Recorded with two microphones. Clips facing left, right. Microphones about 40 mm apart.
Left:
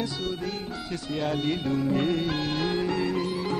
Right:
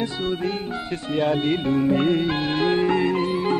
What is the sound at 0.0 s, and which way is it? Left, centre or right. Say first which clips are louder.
Speech: right 6 dB; right.